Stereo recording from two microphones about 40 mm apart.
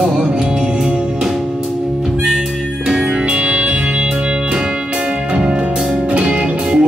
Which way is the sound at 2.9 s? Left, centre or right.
Right.